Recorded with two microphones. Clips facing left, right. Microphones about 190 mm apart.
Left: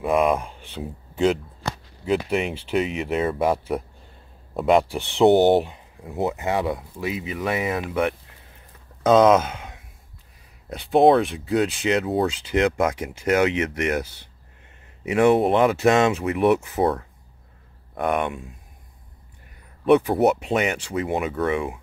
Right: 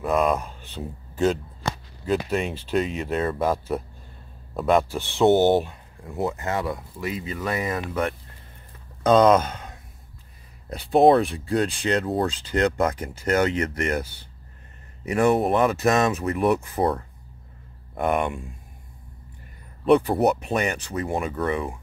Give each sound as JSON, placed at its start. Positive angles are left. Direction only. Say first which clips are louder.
{"t": 0.0, "sound": "speech", "louder": "left 2 dB", "side_deg": 10}
{"t": 15.3, "sound": "speech", "louder": "left 2 dB", "side_deg": 25}
{"t": 16.4, "sound": "speech", "louder": "left 3 dB", "side_deg": 5}
{"t": 19.8, "sound": "speech", "louder": "left 1 dB", "side_deg": 0}